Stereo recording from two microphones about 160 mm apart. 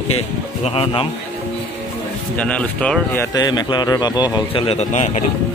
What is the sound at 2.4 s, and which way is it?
Speech, 5° left (ahead or behind).